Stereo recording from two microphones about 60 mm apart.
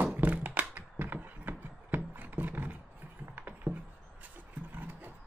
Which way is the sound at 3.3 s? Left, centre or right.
Right.